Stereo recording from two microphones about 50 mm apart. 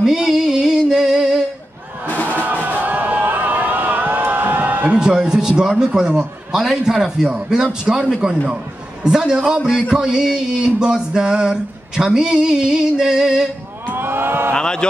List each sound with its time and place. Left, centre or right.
0.0 s music: centre
2.0 s music: left
2.3 s music: right
4.9 s a sound: centre
13.8 s a sound: right
14.5 s speech: centre